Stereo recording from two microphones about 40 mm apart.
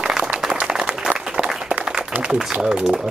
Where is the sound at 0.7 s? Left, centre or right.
Centre.